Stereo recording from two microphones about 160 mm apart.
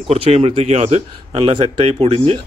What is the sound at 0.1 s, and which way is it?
Speech, 35° right (ahead or behind).